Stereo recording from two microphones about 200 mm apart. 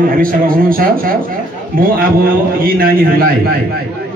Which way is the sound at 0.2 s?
45° right (ahead or behind).